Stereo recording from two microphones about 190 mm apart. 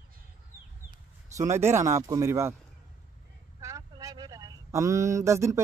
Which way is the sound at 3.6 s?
15° right (ahead or behind).